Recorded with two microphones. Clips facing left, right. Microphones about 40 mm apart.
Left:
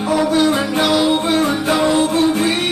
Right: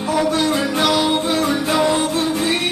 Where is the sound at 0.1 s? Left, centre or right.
Centre.